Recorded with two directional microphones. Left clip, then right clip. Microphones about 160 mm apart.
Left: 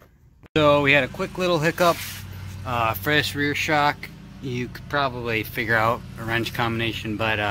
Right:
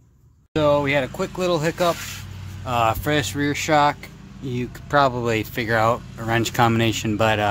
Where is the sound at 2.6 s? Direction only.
25° right (ahead or behind).